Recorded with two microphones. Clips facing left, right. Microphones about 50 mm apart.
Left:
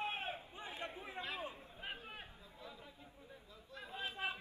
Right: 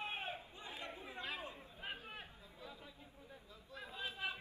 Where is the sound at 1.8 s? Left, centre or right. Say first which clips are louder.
Even; centre.